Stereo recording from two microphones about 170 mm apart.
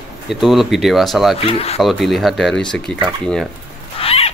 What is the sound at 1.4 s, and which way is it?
Speech, 35° left (ahead or behind).